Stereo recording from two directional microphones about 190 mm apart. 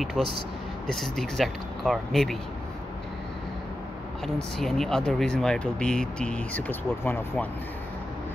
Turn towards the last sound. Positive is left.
turn(degrees=10)  # may be behind; listen again after turning